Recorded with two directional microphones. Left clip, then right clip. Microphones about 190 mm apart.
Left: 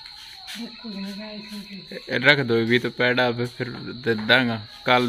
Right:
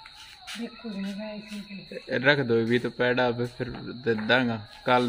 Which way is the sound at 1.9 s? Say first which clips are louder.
Left 5 dB; 5° left (ahead or behind).